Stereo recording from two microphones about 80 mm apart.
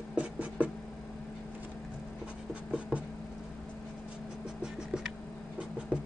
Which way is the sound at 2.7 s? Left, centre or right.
Centre.